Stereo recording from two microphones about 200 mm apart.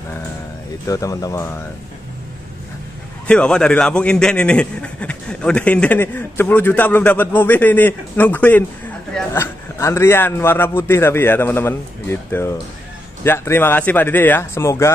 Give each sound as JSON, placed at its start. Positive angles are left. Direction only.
{"t": 0.8, "sound": "a man's voice", "side_deg": 15}
{"t": 3.3, "sound": "a man's voice", "side_deg": 5}